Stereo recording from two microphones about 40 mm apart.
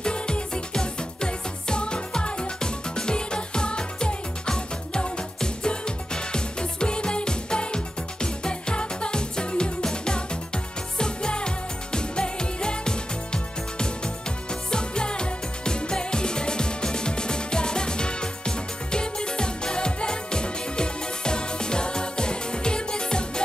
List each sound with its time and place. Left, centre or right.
0.0 s music: left